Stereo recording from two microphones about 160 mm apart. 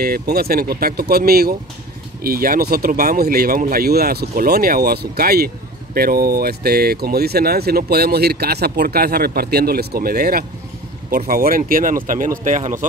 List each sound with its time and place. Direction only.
0.0 s speech: 70° right (ahead or behind); by 12.8 s 50° right (ahead or behind)